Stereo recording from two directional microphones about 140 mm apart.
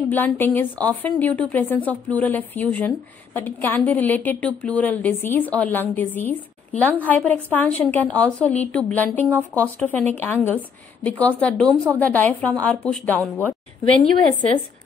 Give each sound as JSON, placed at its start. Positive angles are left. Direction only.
{"t": 0.1, "sound": "a woman's voice", "side_deg": 15}
{"t": 11.6, "sound": "a woman's voice", "side_deg": -20}
{"t": 12.0, "sound": "a woman's voice", "side_deg": 10}